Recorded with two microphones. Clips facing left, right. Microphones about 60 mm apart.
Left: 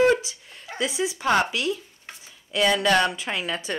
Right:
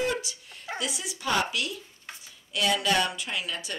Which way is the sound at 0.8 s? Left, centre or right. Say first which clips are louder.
Left 10 dB; left.